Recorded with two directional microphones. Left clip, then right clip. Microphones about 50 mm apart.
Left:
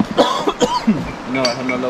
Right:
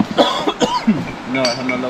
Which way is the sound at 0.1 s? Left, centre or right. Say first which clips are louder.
Even; centre.